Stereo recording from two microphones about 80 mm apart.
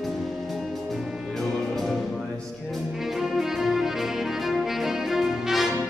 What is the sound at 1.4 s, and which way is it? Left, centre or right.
Music, centre.